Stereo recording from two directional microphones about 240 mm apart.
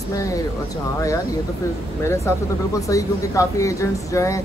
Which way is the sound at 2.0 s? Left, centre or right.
Centre.